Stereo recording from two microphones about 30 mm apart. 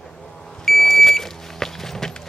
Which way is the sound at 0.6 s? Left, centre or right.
Centre.